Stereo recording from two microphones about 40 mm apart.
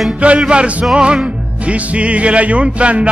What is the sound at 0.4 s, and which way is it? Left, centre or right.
Music, right.